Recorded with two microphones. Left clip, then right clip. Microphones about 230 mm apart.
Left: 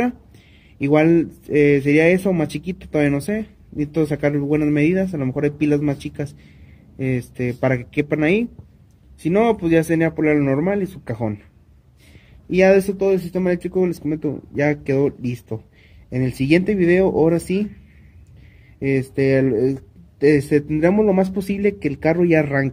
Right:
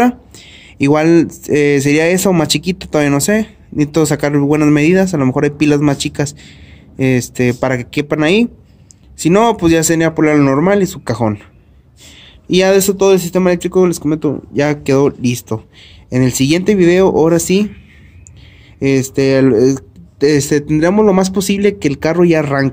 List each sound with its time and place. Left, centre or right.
0.0 s speech: right
16.3 s speech: right
16.9 s speech: centre
18.8 s speech: centre